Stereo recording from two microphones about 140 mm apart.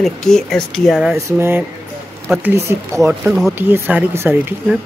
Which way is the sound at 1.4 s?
15° right (ahead or behind).